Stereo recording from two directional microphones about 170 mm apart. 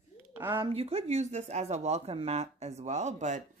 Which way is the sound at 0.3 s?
10° right (ahead or behind).